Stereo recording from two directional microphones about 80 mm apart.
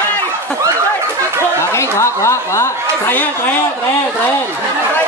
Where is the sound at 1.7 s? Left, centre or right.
Left.